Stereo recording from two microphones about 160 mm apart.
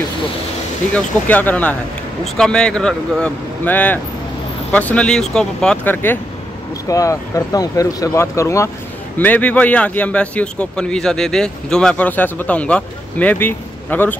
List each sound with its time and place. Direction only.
0.9 s a man's voice: 10° left (ahead or behind)
6.9 s a man's voice: 20° left (ahead or behind)